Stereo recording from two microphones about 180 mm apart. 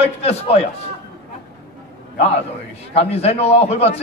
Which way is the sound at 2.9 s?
35° left (ahead or behind).